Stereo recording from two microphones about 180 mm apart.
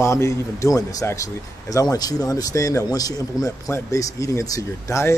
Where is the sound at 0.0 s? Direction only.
15° left (ahead or behind).